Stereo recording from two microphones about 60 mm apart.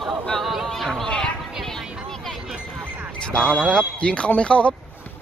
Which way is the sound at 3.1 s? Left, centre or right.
Centre.